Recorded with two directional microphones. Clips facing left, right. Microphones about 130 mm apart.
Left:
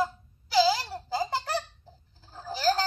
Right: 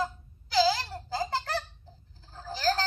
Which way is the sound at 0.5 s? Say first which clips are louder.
Left 2 dB; 20° left (ahead or behind).